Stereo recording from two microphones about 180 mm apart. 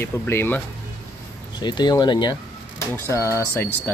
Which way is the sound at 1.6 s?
25° left (ahead or behind).